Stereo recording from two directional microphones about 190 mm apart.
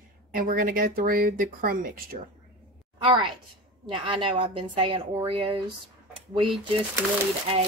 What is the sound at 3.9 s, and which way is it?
A woman's voice, 25° right (ahead or behind).